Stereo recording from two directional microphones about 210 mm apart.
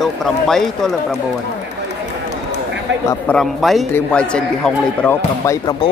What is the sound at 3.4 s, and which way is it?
A man's voice, centre (ahead or behind).